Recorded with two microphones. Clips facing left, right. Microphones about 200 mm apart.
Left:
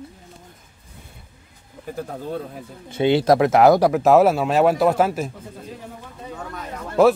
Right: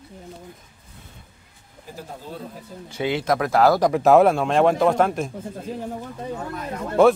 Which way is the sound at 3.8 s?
5° left (ahead or behind).